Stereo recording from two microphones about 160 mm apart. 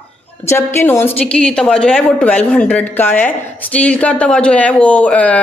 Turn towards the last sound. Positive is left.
turn(degrees=5)  # may be behind; listen again after turning